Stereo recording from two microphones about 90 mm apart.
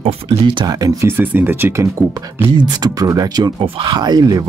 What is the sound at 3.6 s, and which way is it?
Speech, 70° right (ahead or behind).